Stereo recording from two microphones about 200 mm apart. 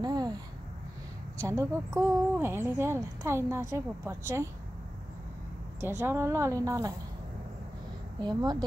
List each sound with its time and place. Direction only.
0.0 s a sound: 20° right (ahead or behind)
1.4 s a woman's voice: 15° right (ahead or behind)
5.8 s a woman's voice: 10° right (ahead or behind)
8.2 s speech: 20° right (ahead or behind)